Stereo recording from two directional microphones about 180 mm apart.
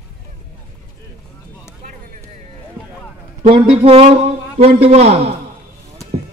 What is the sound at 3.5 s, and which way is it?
A man's voice, 30° right (ahead or behind).